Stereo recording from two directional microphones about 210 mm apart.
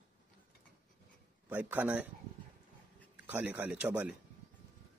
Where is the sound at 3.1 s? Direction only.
5° right (ahead or behind).